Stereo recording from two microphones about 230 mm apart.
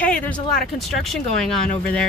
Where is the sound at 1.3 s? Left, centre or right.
Centre.